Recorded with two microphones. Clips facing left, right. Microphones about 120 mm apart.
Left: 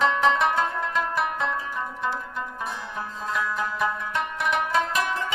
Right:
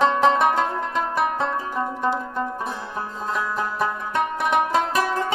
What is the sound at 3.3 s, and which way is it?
Music, 35° right (ahead or behind).